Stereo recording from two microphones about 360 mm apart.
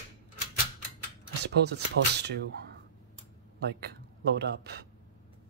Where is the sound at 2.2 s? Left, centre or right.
Right.